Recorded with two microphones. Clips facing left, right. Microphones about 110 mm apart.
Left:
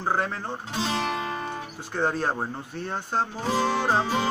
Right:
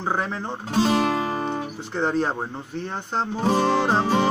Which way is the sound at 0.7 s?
40° right (ahead or behind).